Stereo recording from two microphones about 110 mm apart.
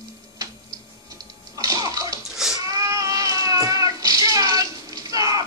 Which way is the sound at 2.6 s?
30° right (ahead or behind).